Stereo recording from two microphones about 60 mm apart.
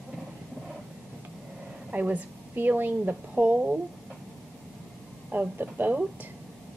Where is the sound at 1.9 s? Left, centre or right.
Right.